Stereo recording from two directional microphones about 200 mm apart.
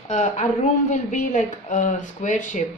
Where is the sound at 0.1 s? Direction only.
35° left (ahead or behind).